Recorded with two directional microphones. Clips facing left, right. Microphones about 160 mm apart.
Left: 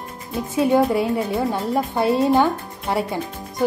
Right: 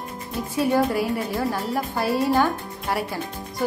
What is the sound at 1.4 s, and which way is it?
Speech, 20° left (ahead or behind).